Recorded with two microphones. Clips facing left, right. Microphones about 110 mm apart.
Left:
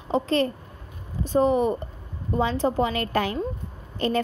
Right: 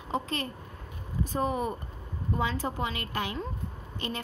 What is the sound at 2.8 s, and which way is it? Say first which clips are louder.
Speech: left 9 dB; 45° left (ahead or behind).